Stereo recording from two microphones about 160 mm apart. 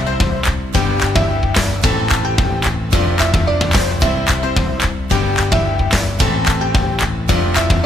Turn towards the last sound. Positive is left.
turn(degrees=0)  # may be behind; listen again after turning